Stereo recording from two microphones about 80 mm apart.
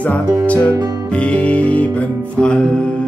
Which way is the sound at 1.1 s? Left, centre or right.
Centre.